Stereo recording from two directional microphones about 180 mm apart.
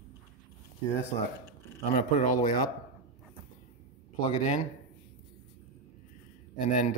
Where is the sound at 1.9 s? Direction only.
45° left (ahead or behind).